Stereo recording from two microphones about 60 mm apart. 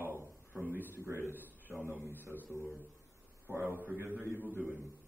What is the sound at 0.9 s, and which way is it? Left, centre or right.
Speech, right.